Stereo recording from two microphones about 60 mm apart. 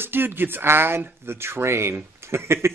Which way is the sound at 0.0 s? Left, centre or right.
Right.